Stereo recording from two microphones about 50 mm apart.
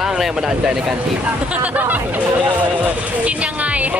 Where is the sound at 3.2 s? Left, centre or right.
Right.